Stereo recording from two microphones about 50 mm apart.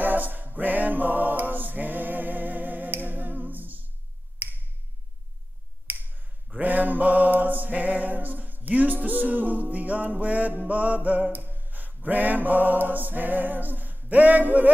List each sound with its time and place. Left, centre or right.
0.0 s a capella: right
4.4 s finger snapping: right
5.9 s finger snapping: right
6.6 s music: right
11.3 s a sound: right